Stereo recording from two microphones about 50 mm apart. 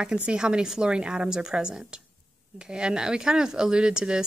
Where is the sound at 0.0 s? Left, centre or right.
Right.